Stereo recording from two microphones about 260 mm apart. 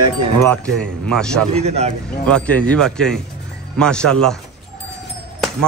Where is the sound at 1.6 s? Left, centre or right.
Right.